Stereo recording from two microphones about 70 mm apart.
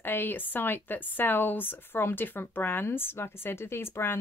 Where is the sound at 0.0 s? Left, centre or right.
Left.